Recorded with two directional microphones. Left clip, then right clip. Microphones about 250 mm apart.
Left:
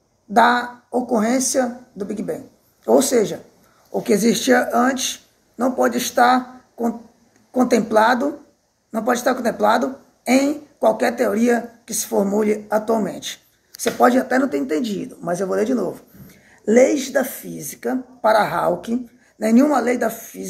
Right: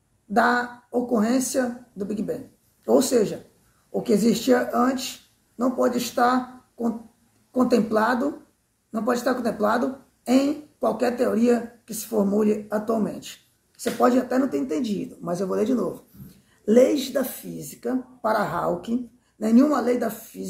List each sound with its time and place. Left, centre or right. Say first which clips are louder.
0.3 s speech: left 6 dB; centre